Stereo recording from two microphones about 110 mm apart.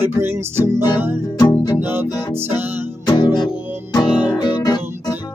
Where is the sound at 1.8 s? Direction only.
20° right (ahead or behind).